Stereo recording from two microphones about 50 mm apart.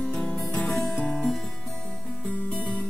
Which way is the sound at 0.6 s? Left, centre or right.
Centre.